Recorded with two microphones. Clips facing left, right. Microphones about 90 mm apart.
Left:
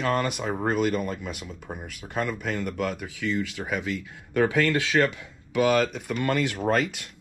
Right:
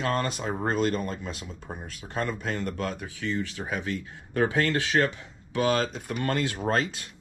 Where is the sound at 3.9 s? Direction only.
90° left.